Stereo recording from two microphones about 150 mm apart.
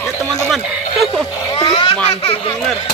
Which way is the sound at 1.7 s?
40° left (ahead or behind).